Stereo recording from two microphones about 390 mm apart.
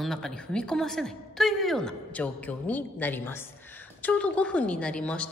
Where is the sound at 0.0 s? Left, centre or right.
Centre.